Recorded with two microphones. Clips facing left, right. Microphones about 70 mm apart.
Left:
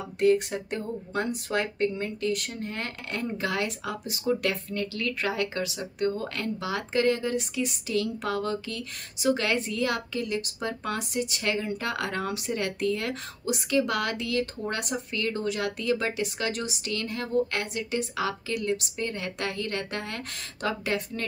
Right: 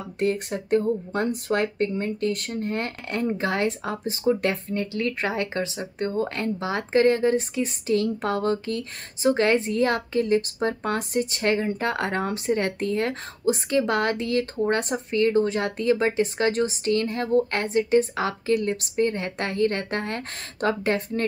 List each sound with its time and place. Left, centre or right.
0.2 s speech: right